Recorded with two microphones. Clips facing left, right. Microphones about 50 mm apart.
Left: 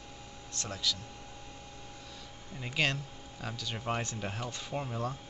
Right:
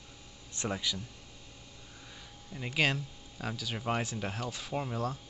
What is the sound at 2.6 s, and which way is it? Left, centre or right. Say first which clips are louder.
Speech: right 2 dB; centre.